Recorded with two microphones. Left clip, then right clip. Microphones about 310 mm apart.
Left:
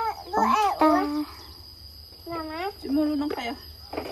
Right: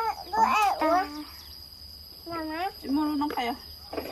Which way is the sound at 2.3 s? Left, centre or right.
Centre.